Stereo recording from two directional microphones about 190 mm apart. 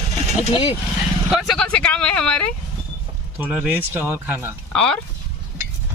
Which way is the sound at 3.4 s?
5° right (ahead or behind).